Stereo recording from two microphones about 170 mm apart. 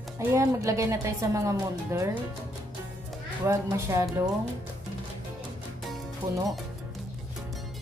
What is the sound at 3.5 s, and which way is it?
Speech, 15° right (ahead or behind).